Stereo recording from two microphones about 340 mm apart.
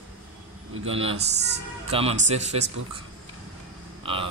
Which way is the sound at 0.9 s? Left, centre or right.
Centre.